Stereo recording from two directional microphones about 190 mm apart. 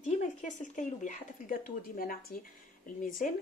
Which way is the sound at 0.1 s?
40° left (ahead or behind).